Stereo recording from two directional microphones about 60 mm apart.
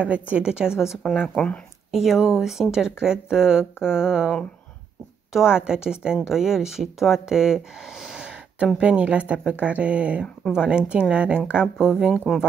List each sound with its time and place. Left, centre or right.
0.0 s speech: right
1.3 s speech: centre
1.9 s speech: centre
5.3 s speech: centre
8.2 s a sound: centre
8.7 s speech: centre
12.3 s speech: centre